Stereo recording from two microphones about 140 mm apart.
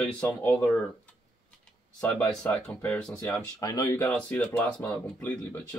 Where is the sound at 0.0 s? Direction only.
10° left (ahead or behind).